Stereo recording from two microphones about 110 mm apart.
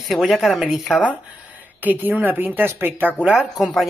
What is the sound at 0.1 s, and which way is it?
Speech, centre (ahead or behind).